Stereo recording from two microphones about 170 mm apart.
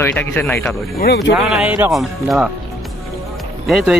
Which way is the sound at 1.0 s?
70° left (ahead or behind).